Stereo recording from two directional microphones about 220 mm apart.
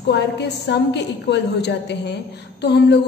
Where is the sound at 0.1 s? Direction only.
50° left (ahead or behind).